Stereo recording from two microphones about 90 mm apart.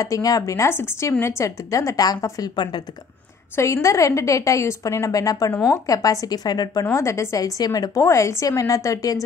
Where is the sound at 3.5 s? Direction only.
35° left (ahead or behind).